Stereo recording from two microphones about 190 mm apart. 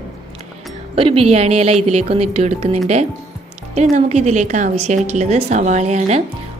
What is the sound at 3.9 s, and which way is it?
A woman's voice, 35° right (ahead or behind).